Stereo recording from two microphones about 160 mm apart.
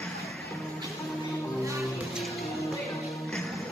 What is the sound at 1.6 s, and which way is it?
Music, 20° right (ahead or behind).